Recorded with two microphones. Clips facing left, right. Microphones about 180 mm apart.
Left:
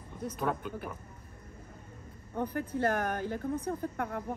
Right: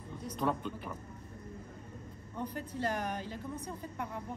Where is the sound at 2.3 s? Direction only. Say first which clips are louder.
Left 6 dB; 60° left (ahead or behind).